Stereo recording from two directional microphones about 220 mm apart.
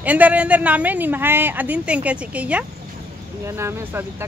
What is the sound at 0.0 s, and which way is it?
Speech, 5° right (ahead or behind).